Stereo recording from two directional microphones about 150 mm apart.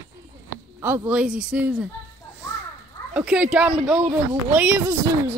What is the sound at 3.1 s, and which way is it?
Speech, 10° right (ahead or behind).